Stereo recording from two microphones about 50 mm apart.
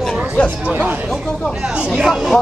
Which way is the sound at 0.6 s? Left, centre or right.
Right.